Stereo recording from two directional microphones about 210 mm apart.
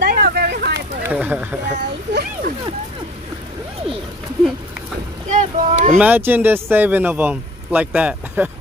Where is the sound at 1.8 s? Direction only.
50° right (ahead or behind).